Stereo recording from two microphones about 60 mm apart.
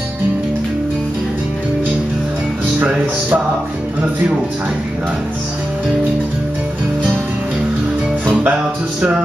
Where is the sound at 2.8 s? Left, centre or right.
Right.